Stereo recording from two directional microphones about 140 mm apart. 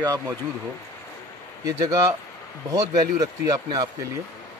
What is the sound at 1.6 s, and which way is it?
Speech, 25° right (ahead or behind).